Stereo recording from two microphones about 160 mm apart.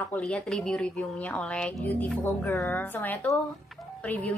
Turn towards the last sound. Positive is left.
turn(degrees=5)  # may be behind; listen again after turning